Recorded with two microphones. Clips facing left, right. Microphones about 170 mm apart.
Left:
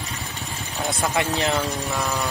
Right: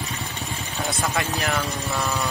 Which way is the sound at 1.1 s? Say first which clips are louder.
Left 3 dB; 20° left (ahead or behind).